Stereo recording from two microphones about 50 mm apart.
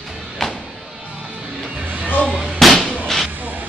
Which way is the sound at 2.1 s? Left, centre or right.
Left.